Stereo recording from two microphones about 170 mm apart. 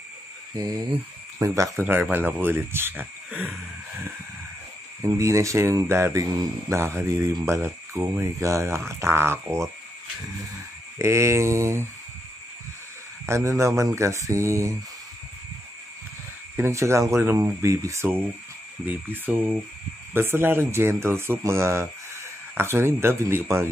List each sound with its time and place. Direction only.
1.4 s speech: 20° right (ahead or behind)
5.0 s speech: 20° right (ahead or behind)
11.0 s speech: 15° right (ahead or behind)
13.3 s speech: 15° right (ahead or behind)
16.5 s speech: 15° right (ahead or behind)